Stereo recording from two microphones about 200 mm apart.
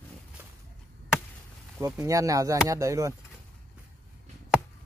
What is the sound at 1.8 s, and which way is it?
Speech, 15° right (ahead or behind).